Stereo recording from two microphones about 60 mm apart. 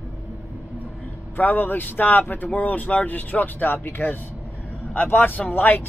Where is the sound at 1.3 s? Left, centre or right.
Left.